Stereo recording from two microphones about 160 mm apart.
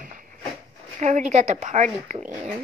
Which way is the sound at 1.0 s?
45° right (ahead or behind).